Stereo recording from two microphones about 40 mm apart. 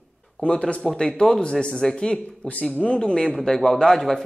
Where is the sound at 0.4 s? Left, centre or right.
Left.